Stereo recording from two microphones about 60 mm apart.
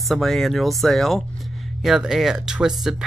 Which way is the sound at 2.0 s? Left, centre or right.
Centre.